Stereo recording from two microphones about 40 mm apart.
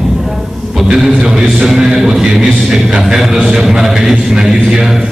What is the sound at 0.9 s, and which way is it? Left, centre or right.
Speech, centre.